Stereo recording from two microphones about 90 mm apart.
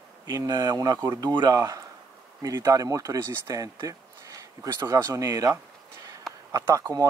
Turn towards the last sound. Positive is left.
turn(degrees=-35)  # may be behind; listen again after turning